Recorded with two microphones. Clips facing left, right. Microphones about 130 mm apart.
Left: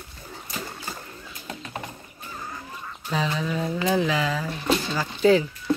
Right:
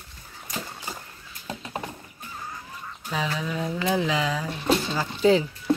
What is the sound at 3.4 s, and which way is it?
Speech, 10° right (ahead or behind).